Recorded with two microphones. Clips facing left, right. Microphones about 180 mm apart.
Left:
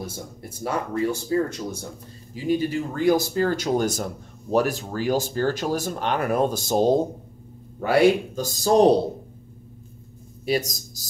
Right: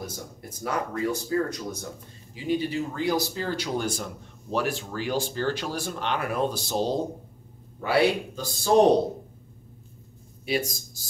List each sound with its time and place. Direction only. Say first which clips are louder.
0.0 s speech: left 3 dB; 30° left (ahead or behind)
2.3 s speech: left 3 dB; 45° left (ahead or behind)
10.4 s speech: left 3 dB; 40° left (ahead or behind)